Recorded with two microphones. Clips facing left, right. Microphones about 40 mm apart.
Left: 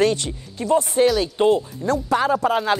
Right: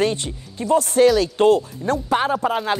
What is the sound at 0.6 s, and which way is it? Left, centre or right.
Speech, centre.